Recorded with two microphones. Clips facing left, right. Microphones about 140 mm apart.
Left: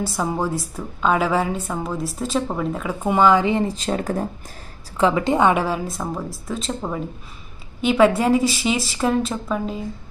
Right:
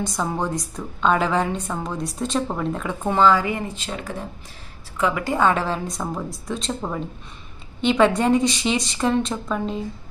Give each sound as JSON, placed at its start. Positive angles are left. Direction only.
{"t": 0.0, "sound": "a woman's voice", "side_deg": 5}
{"t": 3.7, "sound": "speech", "side_deg": 40}
{"t": 4.9, "sound": "a woman's voice", "side_deg": 30}